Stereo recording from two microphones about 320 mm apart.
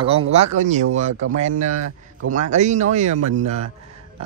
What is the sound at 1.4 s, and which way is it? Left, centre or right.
A man's voice, right.